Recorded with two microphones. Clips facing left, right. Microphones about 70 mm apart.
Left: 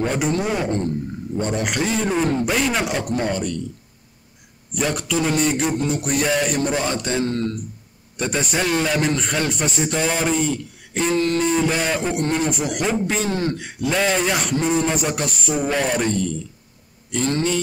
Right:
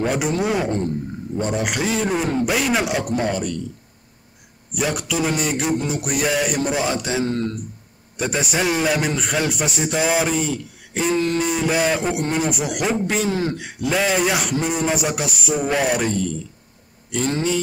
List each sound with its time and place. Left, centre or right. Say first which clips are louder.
0.0 s a man's voice: even; centre
4.7 s a man's voice: even; centre